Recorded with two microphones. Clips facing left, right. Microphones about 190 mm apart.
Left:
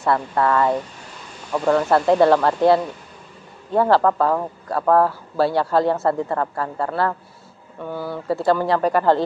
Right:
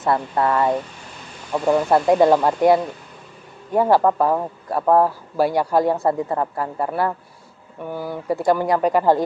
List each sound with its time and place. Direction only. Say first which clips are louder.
0.0 s speech: even; 20° right (ahead or behind)